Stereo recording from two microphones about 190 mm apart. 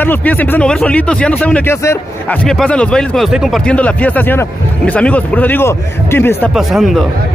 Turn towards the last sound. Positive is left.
turn(degrees=0)  # may be behind; listen again after turning